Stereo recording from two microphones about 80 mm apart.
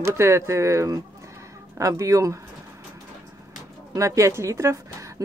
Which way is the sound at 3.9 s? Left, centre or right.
Right.